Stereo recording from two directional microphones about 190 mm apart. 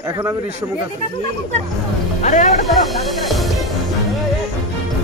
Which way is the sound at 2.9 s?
Centre (ahead or behind).